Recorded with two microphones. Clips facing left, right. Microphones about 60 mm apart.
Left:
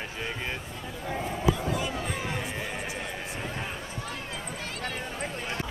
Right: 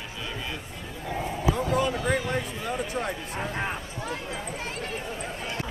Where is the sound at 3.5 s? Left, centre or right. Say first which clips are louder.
Right 4 dB; right.